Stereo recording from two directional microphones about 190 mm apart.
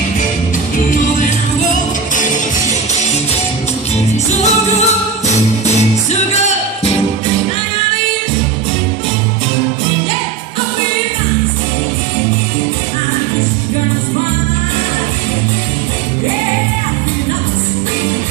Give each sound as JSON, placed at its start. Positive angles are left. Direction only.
{"t": 4.4, "sound": "music", "side_deg": 35}